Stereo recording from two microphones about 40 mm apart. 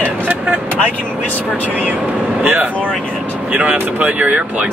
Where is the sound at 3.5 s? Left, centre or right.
Right.